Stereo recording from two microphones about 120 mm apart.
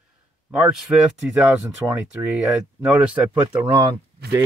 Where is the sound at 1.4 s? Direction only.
15° right (ahead or behind).